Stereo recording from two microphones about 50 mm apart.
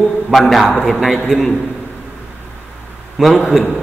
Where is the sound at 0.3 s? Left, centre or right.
Centre.